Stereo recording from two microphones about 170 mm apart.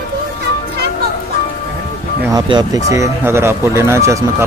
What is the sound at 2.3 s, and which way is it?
Speech, 25° right (ahead or behind).